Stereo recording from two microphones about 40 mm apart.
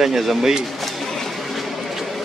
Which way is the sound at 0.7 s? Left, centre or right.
Centre.